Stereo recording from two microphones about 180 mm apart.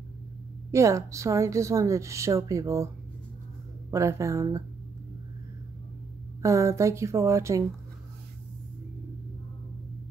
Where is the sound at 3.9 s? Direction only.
15° right (ahead or behind).